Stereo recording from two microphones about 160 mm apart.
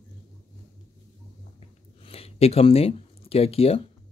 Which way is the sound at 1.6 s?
40° left (ahead or behind).